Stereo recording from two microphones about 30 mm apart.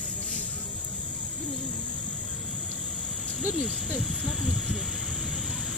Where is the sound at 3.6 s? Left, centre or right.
Centre.